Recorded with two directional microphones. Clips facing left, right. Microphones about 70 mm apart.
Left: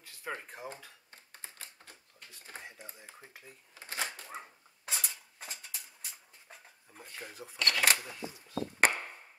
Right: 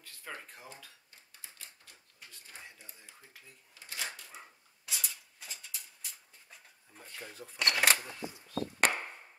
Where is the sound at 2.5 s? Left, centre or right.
Left.